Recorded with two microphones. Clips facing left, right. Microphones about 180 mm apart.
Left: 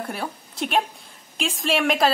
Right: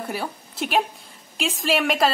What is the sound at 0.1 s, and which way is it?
A woman's voice, centre (ahead or behind).